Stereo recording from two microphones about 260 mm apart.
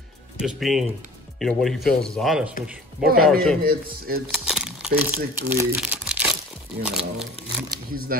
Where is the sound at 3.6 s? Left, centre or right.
Right.